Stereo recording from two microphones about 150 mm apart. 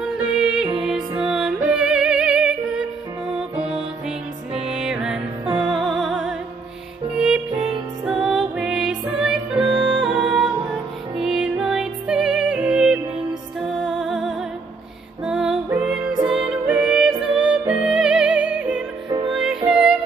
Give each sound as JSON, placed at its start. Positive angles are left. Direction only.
{"t": 0.4, "sound": "music", "side_deg": -5}
{"t": 19.0, "sound": "music", "side_deg": -35}
{"t": 19.3, "sound": "music", "side_deg": -5}